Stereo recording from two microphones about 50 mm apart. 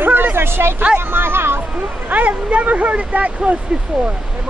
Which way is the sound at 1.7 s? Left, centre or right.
Right.